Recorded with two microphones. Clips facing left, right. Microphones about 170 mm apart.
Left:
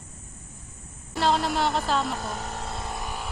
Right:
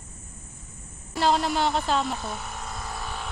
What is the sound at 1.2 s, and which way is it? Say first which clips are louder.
Speech: right 1 dB; centre (ahead or behind).